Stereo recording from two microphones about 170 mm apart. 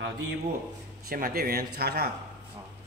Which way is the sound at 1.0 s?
60° right (ahead or behind).